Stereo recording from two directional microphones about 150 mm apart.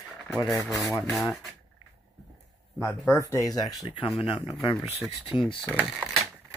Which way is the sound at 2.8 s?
20° left (ahead or behind).